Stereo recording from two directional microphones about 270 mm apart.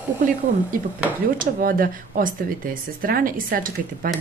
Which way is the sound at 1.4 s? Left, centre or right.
Right.